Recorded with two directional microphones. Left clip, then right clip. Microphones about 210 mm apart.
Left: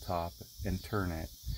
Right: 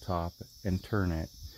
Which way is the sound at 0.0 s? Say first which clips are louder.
Right 1 dB; 40° right (ahead or behind).